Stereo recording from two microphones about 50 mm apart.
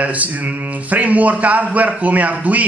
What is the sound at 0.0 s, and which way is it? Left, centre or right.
A man's voice, right.